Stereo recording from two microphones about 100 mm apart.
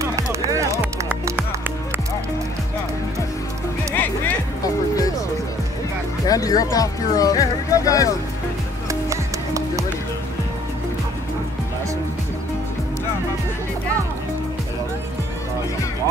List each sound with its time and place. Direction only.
0.0 s music: 30° right (ahead or behind)
6.2 s speech: 35° left (ahead or behind)
9.1 s music: 30° right (ahead or behind)